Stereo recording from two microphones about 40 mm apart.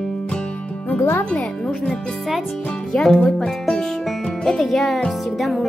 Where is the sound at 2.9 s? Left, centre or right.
Centre.